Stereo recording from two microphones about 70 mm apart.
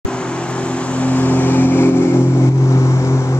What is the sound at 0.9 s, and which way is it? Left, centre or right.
Vehicle, left.